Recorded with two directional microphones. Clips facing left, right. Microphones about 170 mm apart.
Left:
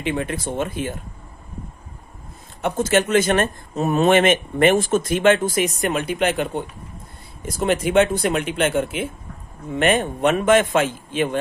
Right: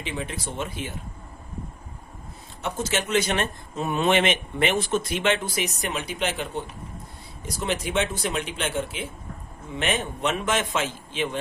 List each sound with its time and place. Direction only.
0.0 s speech: 55° left (ahead or behind)
2.6 s speech: 50° left (ahead or behind)